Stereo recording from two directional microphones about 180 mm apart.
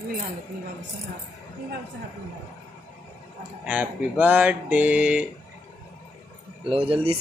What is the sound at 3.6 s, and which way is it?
Speech, 10° right (ahead or behind).